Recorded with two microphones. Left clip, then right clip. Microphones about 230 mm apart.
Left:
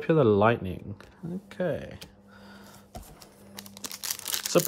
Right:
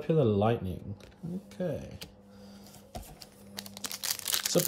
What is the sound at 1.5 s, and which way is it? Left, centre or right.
Speech, centre.